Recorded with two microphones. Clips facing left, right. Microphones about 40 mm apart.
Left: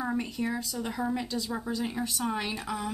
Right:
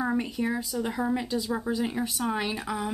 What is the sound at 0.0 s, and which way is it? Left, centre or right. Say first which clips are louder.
Speech: right 3 dB; centre.